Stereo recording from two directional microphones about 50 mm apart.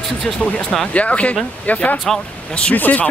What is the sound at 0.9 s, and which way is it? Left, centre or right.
Speech, left.